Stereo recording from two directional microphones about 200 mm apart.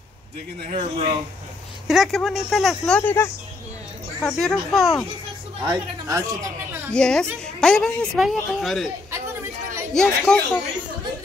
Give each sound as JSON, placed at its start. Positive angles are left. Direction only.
{"t": 0.7, "sound": "speech", "side_deg": -30}
{"t": 1.9, "sound": "speech", "side_deg": 0}
{"t": 4.4, "sound": "speech", "side_deg": 0}
{"t": 5.6, "sound": "a woman's voice", "side_deg": -20}
{"t": 6.9, "sound": "speech", "side_deg": 5}
{"t": 9.9, "sound": "speech", "side_deg": 5}